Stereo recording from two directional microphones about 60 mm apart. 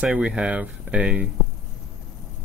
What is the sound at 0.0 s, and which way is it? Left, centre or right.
Speech, centre.